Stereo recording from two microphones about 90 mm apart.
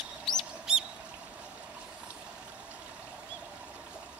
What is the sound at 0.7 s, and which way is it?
Bird, 5° right (ahead or behind).